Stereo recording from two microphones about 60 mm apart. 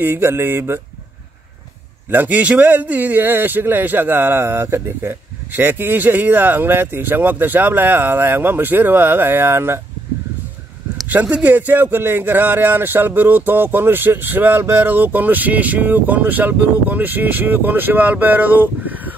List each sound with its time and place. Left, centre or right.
0.0 s speech: right
2.0 s a man's voice: right
11.2 s speech: centre
11.5 s a man's voice: right